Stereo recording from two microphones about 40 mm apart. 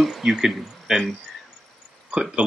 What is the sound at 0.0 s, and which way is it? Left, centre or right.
Speech, centre.